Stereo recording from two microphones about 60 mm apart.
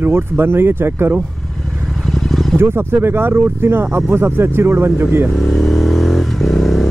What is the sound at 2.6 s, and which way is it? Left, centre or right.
Speech, right.